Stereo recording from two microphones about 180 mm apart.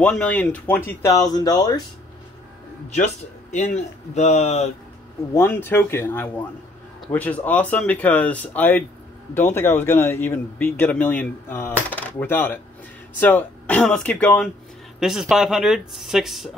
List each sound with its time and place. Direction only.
0.0 s speech: 5° left (ahead or behind)
3.5 s speech: 40° left (ahead or behind)
5.3 s speech: 10° left (ahead or behind)